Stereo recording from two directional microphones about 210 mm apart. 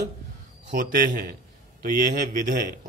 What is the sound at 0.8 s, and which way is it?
A man's voice, 40° right (ahead or behind).